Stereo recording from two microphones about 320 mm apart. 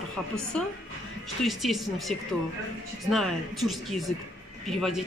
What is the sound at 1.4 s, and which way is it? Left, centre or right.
Speech, centre.